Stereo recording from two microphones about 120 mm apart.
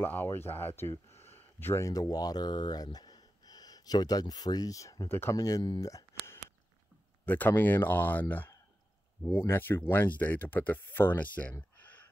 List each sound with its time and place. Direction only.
0.0 s speech: 15° left (ahead or behind); by 5.9 s 35° left (ahead or behind)
5.9 s a sound: 25° left (ahead or behind)
7.2 s speech: 15° left (ahead or behind)